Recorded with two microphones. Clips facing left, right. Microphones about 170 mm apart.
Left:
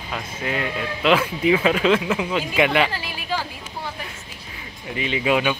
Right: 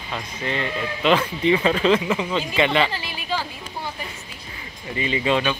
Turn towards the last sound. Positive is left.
turn(degrees=10)  # may be behind; listen again after turning